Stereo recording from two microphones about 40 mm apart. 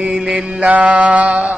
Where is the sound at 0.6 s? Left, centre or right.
Right.